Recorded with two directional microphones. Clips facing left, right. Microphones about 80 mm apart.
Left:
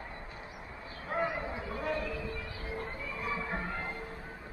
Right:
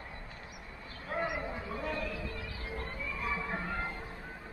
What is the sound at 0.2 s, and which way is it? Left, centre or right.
Vehicle, centre.